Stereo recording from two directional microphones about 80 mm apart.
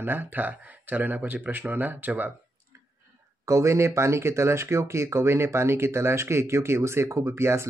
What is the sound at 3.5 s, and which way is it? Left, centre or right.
Speech, right.